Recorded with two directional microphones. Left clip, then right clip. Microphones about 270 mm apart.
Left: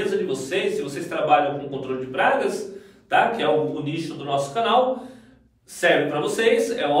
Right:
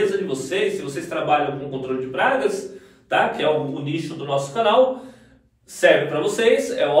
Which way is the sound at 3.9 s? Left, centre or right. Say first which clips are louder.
Right 4 dB; centre.